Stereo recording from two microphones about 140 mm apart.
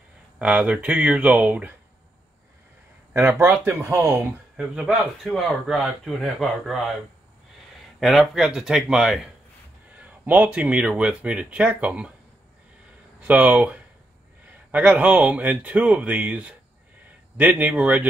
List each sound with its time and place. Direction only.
0.4 s speech: 10° right (ahead or behind)
3.1 s speech: 15° right (ahead or behind)
4.6 s speech: 5° right (ahead or behind)
8.0 s speech: centre (ahead or behind)
13.2 s speech: 10° right (ahead or behind)